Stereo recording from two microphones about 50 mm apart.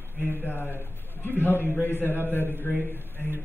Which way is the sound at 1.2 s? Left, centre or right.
Left.